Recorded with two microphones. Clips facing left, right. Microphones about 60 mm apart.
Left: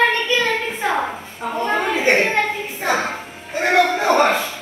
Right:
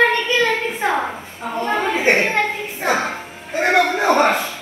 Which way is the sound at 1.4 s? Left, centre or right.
Left.